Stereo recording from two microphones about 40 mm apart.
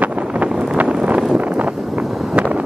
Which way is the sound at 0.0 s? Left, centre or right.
Right.